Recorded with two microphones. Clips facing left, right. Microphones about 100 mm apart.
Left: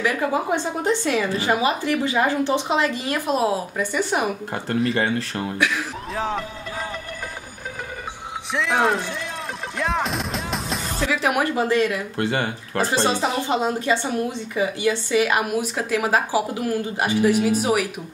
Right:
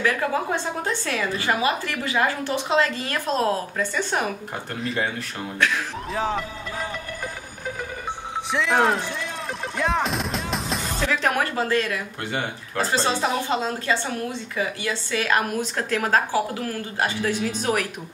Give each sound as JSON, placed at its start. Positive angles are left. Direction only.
{"t": 0.0, "sound": "a woman's voice", "side_deg": 15}
{"t": 5.6, "sound": "a woman's voice", "side_deg": 10}
{"t": 6.1, "sound": "speech", "side_deg": 0}
{"t": 8.5, "sound": "speech", "side_deg": 0}
{"t": 9.8, "sound": "music", "side_deg": 0}
{"t": 11.2, "sound": "a woman's voice", "side_deg": 15}